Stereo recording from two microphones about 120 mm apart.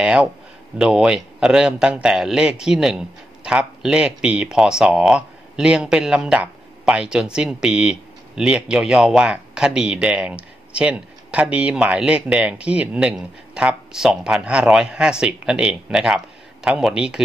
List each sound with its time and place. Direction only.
0.0 s a man's voice: 10° right (ahead or behind)